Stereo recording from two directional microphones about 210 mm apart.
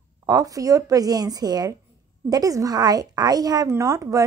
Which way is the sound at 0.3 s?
15° right (ahead or behind).